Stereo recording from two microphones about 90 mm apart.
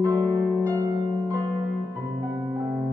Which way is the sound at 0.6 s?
30° right (ahead or behind).